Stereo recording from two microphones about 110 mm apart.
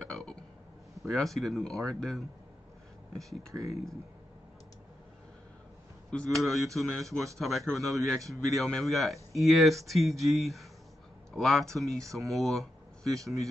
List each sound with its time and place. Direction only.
0.0 s burping: 10° left (ahead or behind)
1.1 s speech: centre (ahead or behind)
3.5 s speech: 15° right (ahead or behind)
6.0 s speech: 5° left (ahead or behind)
8.2 s speech: 30° right (ahead or behind)
8.5 s speech: 5° left (ahead or behind)
12.0 s speech: 30° right (ahead or behind)
12.3 s speech: centre (ahead or behind)